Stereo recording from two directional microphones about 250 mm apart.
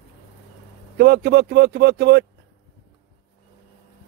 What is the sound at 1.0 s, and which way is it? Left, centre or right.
Speech, right.